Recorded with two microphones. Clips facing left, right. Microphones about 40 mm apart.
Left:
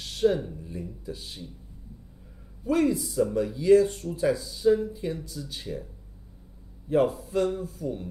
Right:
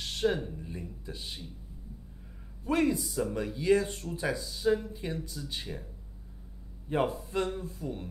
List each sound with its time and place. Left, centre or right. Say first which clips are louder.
0.0 s speech: left 5 dB; centre
2.6 s speech: left 4 dB; centre
6.9 s speech: left 6 dB; centre